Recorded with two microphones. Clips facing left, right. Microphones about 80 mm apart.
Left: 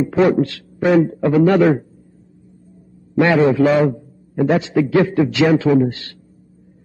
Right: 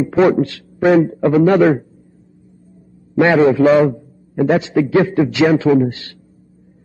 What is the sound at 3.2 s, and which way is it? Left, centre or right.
A man's voice, right.